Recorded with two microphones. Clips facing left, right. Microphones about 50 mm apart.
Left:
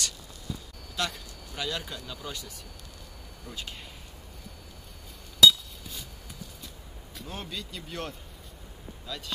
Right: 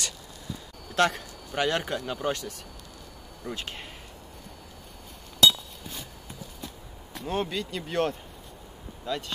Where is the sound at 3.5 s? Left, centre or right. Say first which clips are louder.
Right 5 dB; right.